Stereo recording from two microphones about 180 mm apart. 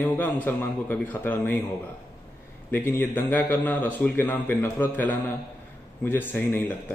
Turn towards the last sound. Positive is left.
turn(degrees=10)  # may be behind; listen again after turning